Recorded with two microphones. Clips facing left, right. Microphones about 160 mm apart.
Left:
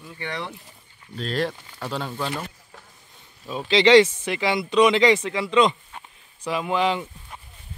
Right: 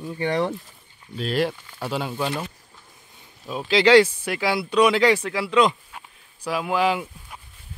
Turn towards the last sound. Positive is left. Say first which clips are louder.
# right 1 dB
turn(degrees=-5)  # may be behind; listen again after turning